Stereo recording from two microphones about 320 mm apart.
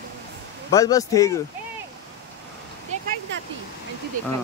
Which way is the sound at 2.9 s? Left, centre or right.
Right.